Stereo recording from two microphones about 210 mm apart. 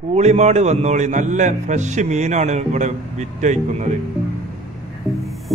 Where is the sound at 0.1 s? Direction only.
30° right (ahead or behind).